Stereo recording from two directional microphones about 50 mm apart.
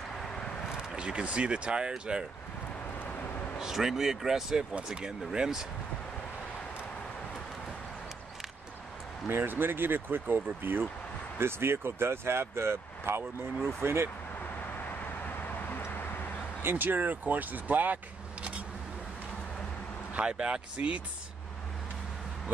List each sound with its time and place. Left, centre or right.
0.7 s speech: centre
3.5 s speech: centre
9.3 s speech: right
16.6 s speech: right
20.2 s speech: right